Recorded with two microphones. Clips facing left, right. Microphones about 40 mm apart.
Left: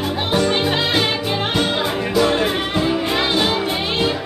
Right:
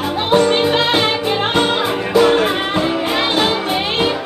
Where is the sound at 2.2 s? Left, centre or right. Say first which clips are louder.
Right 5 dB; right.